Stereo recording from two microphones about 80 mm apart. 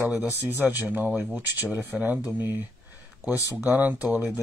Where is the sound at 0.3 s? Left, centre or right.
Right.